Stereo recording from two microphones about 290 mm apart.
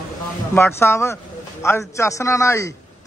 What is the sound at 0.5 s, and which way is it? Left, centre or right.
A man's voice, centre.